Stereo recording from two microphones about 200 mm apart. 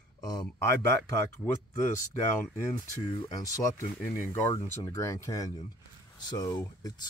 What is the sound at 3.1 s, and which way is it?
Speech, 20° left (ahead or behind).